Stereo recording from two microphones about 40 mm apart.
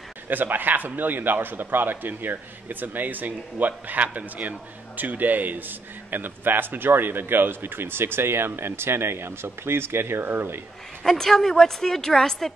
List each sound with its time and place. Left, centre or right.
0.3 s a man's voice: right
10.2 s a man's voice: right
11.1 s a woman's voice: centre